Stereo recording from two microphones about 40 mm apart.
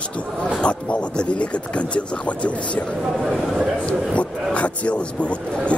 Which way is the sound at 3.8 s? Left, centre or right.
Left.